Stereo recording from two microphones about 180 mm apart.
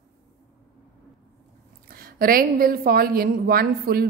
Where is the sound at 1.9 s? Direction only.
55° right (ahead or behind).